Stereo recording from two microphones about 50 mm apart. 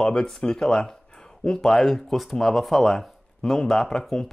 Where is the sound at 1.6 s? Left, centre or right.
Centre.